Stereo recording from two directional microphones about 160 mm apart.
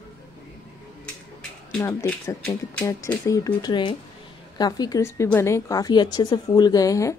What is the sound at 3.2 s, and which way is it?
A woman's voice, 20° left (ahead or behind).